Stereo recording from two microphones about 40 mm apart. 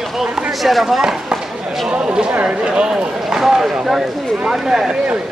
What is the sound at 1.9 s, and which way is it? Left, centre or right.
Speech, right.